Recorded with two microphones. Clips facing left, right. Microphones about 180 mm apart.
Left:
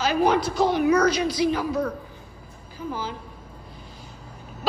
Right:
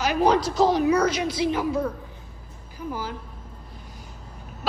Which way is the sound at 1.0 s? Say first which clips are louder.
Left 2 dB; 25° right (ahead or behind).